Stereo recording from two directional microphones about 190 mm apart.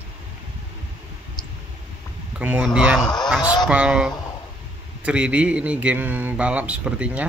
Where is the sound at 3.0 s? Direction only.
20° left (ahead or behind).